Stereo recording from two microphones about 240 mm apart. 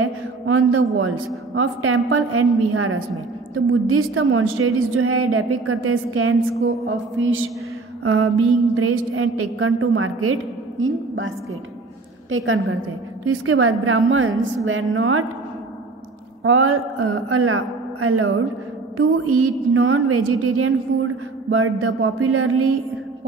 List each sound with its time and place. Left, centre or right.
0.0 s a man's voice: right
6.9 s a sound: right
8.0 s mantra: right
8.7 s a man's voice: right
16.4 s a man's voice: right